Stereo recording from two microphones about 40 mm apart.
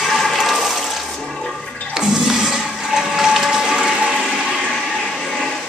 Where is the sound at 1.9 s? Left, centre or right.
Centre.